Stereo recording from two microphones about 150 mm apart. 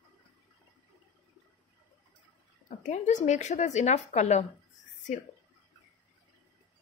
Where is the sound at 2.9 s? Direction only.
55° left (ahead or behind).